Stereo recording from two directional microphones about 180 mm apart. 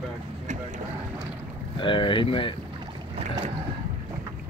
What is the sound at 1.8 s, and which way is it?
Speech, 25° left (ahead or behind).